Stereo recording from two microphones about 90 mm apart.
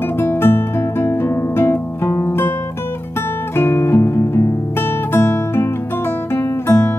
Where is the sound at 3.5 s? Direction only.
25° left (ahead or behind).